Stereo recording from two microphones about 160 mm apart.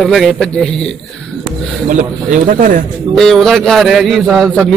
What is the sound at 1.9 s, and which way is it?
Speech, 55° right (ahead or behind).